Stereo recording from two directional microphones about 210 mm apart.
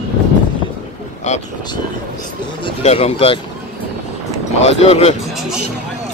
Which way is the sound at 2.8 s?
30° left (ahead or behind).